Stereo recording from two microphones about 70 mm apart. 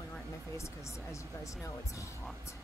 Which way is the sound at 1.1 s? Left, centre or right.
Left.